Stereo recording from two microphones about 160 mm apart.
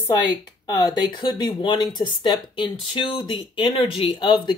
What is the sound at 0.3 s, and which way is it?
Speech, 25° left (ahead or behind).